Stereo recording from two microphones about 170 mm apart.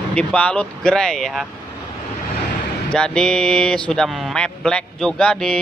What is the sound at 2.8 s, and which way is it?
Speech, 5° left (ahead or behind).